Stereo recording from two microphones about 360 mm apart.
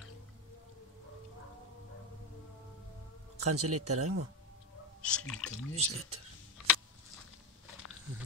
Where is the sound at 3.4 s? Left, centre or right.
Right.